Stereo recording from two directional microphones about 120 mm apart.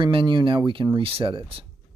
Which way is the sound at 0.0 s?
45° right (ahead or behind).